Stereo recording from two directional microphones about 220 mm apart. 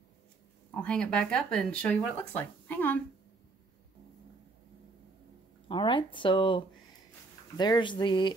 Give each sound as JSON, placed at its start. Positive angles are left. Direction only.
{"t": 0.7, "sound": "speech", "side_deg": 5}
{"t": 5.7, "sound": "speech", "side_deg": 20}